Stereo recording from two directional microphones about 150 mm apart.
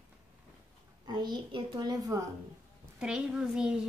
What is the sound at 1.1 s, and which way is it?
A woman's voice, 30° right (ahead or behind).